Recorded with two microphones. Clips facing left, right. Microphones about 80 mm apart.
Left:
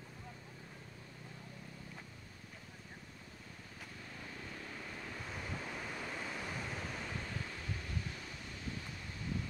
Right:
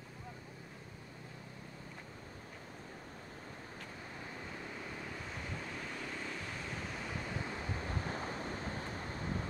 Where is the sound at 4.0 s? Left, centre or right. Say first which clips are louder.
Right 1 dB; right.